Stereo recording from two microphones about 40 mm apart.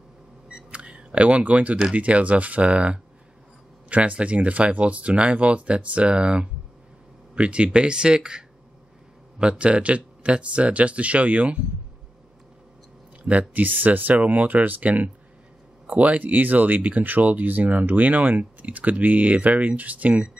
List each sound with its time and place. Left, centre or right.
0.7 s a sound: right
2.0 s speech: right
13.3 s speech: right